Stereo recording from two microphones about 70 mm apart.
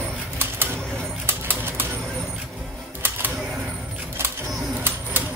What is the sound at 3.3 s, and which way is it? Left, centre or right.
Camera, centre.